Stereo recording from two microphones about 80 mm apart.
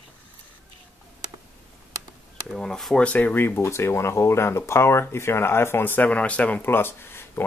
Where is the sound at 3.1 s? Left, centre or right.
Centre.